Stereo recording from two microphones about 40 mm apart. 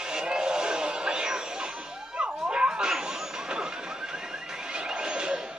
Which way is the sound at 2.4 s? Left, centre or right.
Right.